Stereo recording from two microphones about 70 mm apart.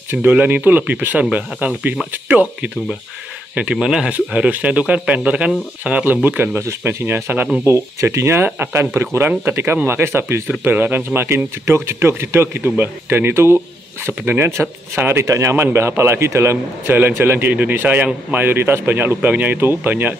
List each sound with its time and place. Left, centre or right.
0.1 s a man's voice: right
3.7 s speech: centre
4.1 s a man's voice: right
7.6 s a man's voice: right
9.8 s a man's voice: right
11.2 s a man's voice: right
15.2 s a man's voice: right